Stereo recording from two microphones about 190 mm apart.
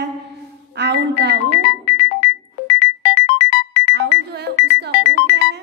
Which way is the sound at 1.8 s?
55° left (ahead or behind).